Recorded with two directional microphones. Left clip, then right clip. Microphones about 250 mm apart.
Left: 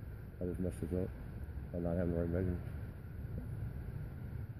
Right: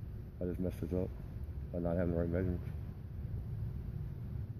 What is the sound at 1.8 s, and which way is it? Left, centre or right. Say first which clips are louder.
Speech: right 2 dB; left.